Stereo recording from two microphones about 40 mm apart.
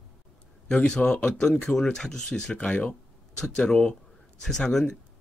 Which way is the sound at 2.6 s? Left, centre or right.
Left.